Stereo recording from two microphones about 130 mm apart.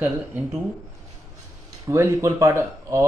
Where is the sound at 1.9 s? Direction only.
20° right (ahead or behind).